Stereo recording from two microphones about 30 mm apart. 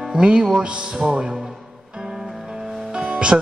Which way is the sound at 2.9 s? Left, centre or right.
Right.